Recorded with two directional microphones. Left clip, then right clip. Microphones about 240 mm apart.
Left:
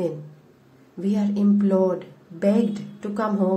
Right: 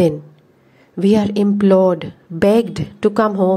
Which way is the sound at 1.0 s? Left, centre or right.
Right.